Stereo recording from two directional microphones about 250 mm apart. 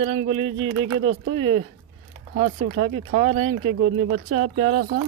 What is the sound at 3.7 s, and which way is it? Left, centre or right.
Speech, right.